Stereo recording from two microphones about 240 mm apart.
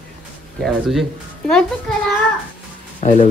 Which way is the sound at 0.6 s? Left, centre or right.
Centre.